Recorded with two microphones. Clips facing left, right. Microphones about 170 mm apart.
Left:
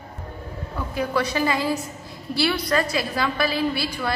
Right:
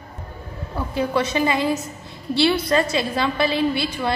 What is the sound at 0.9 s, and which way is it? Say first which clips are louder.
A woman's voice: right 2 dB; 25° right (ahead or behind).